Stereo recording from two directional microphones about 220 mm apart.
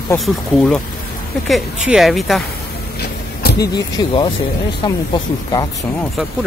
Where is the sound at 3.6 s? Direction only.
20° left (ahead or behind).